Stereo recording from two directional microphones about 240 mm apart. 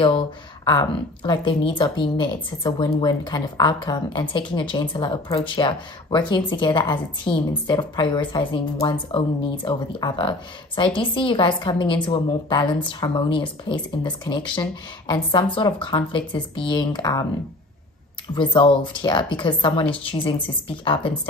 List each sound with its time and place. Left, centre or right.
0.0 s a woman's voice: left
18.3 s a woman's voice: centre